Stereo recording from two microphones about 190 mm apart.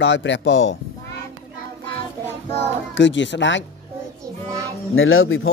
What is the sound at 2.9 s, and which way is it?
Speech, 75° left (ahead or behind).